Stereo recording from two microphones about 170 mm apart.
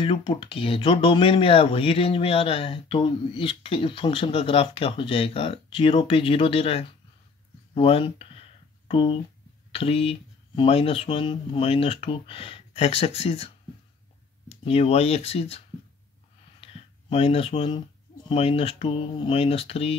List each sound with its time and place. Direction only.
0.0 s speech: 30° left (ahead or behind)
7.7 s a sound: 35° left (ahead or behind)
9.7 s speech: 35° left (ahead or behind)
14.6 s speech: 35° left (ahead or behind)
16.6 s a sound: 35° left (ahead or behind)
18.3 s speech: 35° left (ahead or behind)